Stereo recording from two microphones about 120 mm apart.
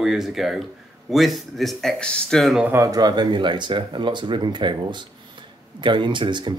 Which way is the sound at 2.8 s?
35° right (ahead or behind).